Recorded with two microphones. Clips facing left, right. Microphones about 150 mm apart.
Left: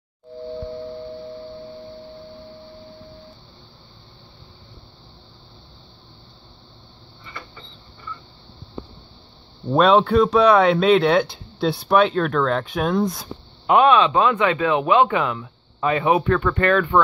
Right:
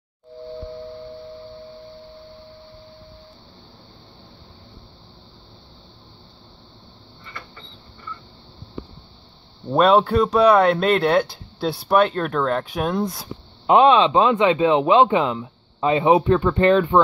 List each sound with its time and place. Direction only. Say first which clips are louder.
9.7 s speech: even; 5° right (ahead or behind)
13.7 s speech: right 1 dB; 25° right (ahead or behind)